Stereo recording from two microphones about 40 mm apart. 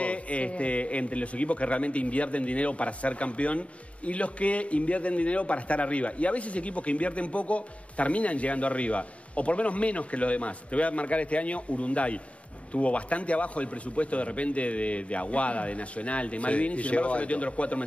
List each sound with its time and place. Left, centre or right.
0.0 s a man's voice: left